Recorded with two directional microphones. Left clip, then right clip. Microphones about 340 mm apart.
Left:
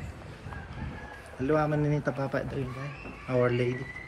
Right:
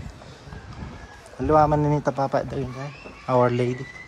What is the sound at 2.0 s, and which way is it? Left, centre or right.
A man's voice, centre.